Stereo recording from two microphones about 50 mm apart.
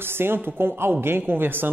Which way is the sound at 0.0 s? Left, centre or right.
Right.